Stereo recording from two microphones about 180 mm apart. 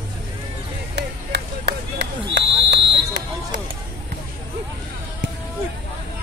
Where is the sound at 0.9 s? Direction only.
70° right (ahead or behind).